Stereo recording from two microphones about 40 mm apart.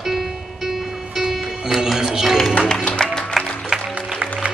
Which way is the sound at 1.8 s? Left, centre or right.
Centre.